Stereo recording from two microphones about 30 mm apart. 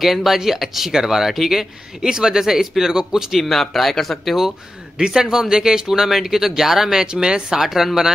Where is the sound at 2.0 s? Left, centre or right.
Right.